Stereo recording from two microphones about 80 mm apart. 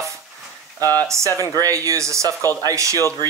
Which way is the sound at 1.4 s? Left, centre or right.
Right.